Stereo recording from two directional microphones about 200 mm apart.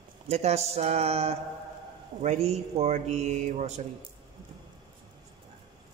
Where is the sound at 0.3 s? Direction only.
35° right (ahead or behind).